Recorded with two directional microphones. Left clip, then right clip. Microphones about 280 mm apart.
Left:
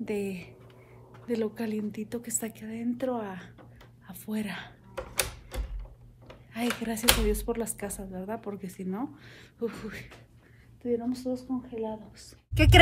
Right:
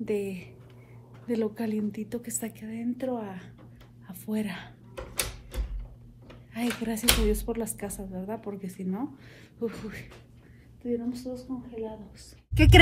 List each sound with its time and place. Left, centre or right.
0.0 s speech: centre
4.1 s a sound: centre
6.5 s speech: centre